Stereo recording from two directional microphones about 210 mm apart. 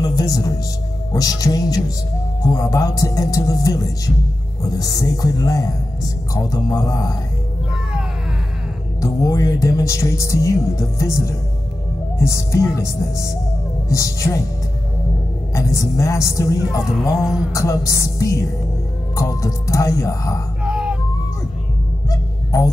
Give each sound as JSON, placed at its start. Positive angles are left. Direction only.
{"t": 0.0, "sound": "music", "side_deg": 15}
{"t": 1.1, "sound": "speech", "side_deg": 15}
{"t": 9.0, "sound": "speech", "side_deg": 15}
{"t": 15.5, "sound": "speech", "side_deg": 15}
{"t": 17.1, "sound": "speech", "side_deg": 0}
{"t": 17.6, "sound": "speech", "side_deg": 15}
{"t": 20.6, "sound": "music", "side_deg": -5}
{"t": 22.1, "sound": "music", "side_deg": 15}